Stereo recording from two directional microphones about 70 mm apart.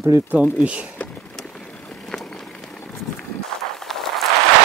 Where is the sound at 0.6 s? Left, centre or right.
Centre.